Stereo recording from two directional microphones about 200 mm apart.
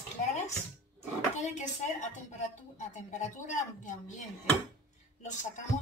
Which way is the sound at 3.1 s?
35° left (ahead or behind).